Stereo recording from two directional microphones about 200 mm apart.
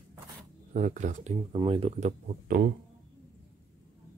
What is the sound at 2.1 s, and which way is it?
Speech, 45° right (ahead or behind).